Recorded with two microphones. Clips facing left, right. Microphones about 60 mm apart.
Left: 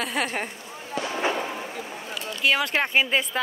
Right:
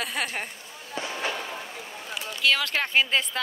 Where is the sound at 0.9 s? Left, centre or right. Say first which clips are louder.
Left 5 dB; left.